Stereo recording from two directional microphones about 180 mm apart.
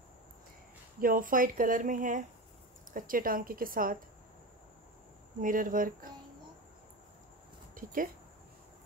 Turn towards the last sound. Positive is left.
turn(degrees=-50)  # may be behind; listen again after turning